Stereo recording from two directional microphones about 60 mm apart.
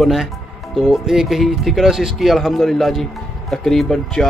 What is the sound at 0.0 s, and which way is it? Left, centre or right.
Speech, centre.